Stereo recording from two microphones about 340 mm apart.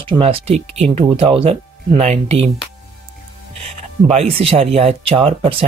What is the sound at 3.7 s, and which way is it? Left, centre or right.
Speech, centre.